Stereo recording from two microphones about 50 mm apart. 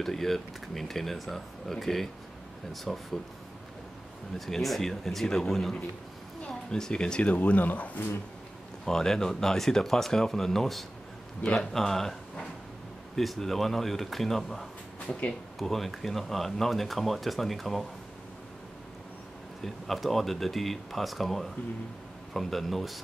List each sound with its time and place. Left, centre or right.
0.0 s speech: centre
4.5 s speech: centre
6.4 s speech: centre
8.8 s speech: centre
15.0 s speech: left
15.6 s speech: centre
19.6 s speech: centre